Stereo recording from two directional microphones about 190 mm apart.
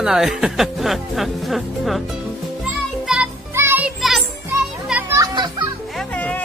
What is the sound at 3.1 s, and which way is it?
Music, 10° right (ahead or behind).